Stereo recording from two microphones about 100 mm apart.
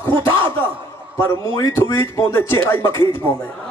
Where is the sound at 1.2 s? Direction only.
30° left (ahead or behind).